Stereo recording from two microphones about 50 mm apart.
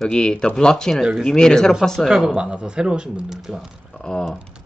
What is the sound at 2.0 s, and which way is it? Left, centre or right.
Speech, centre.